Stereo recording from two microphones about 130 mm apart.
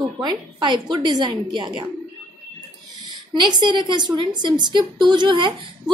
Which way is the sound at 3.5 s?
35° right (ahead or behind).